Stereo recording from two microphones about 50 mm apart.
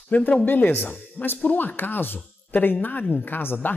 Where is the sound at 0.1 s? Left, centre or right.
Left.